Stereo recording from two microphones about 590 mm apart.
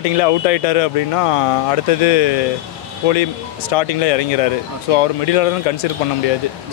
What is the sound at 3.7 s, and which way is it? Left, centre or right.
Speech, left.